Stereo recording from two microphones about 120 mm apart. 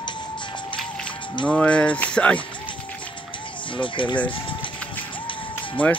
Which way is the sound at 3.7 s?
45° left (ahead or behind).